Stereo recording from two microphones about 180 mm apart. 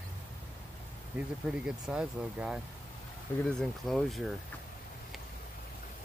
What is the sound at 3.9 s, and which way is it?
Speech, centre (ahead or behind).